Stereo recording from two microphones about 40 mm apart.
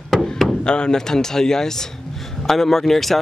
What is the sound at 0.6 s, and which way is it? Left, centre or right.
Speech, left.